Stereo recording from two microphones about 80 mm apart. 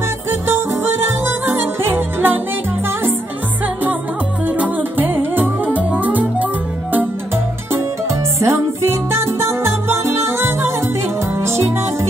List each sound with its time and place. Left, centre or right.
1.5 s music: right
4.5 s music: centre
8.4 s music: right